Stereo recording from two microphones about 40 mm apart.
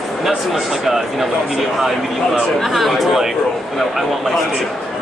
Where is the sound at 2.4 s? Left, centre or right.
Centre.